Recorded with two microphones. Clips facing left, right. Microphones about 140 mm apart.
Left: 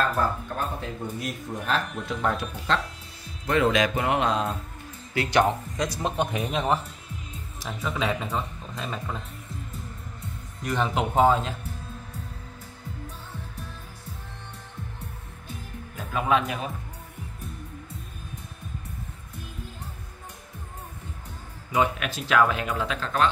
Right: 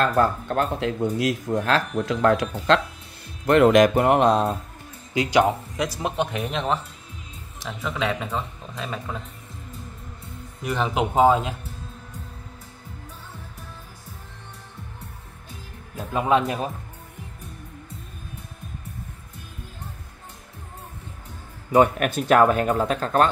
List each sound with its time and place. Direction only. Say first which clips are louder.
0.0 s speech: right 5 dB; 75° right (ahead or behind)
3.4 s speech: right 7 dB; 60° right (ahead or behind); by 4.6 s 40° right (ahead or behind)
5.1 s speech: right 3 dB; 15° right (ahead or behind)
10.6 s speech: right 2 dB; 10° right (ahead or behind)
16.0 s speech: right 3 dB; 30° right (ahead or behind)
21.7 s speech: right 7 dB; 50° right (ahead or behind)